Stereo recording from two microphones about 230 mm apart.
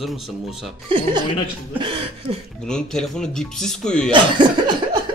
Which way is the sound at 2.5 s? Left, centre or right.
Centre.